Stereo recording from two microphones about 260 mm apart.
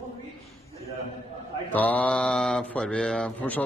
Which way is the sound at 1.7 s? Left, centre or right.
Centre.